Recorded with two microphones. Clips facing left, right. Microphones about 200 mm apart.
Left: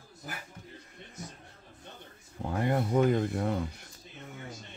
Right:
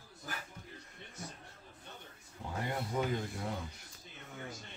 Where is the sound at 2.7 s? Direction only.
55° left (ahead or behind).